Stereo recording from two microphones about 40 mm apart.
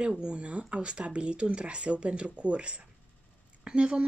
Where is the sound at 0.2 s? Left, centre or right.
Right.